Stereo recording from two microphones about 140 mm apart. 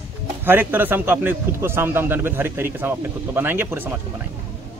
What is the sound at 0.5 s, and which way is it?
Speech, 15° right (ahead or behind).